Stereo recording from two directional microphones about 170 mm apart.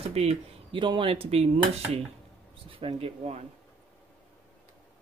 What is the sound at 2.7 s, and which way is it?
Speech, 30° right (ahead or behind).